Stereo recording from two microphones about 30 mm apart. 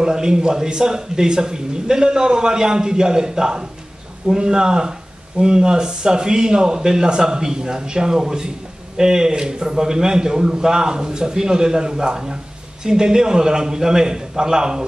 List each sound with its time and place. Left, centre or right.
0.0 s a man's voice: right